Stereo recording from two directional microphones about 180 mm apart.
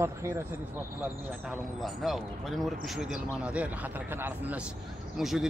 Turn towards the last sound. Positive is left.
turn(degrees=0)  # may be behind; listen again after turning